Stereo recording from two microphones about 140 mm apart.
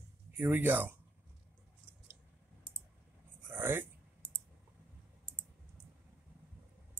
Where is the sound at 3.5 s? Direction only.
15° right (ahead or behind).